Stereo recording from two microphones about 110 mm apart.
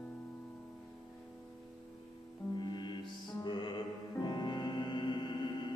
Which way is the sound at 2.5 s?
40° left (ahead or behind).